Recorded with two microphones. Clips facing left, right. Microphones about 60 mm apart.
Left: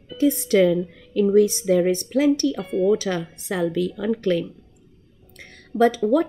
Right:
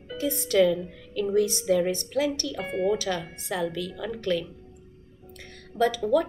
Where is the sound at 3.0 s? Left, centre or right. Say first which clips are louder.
Left 4 dB; left.